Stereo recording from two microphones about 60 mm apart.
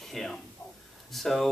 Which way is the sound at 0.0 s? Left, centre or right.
Centre.